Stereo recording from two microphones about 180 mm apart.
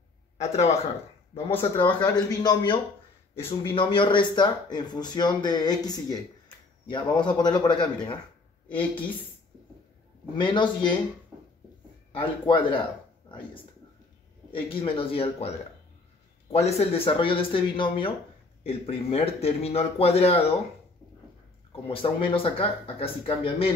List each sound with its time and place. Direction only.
0.4 s speech: 40° left (ahead or behind)
1.3 s speech: 15° left (ahead or behind)
1.9 s speech: 25° left (ahead or behind)
10.3 s speech: 25° left (ahead or behind)
12.1 s speech: 30° left (ahead or behind)
14.5 s speech: 30° left (ahead or behind)
16.5 s speech: 35° left (ahead or behind)
21.8 s speech: 30° left (ahead or behind)